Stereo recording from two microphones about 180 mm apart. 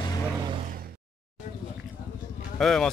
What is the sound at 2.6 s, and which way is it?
Speech, centre (ahead or behind).